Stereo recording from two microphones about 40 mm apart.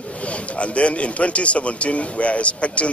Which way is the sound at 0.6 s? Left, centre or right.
Left.